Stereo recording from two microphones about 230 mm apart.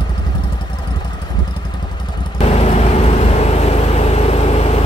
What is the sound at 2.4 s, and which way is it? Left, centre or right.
Vehicle, left.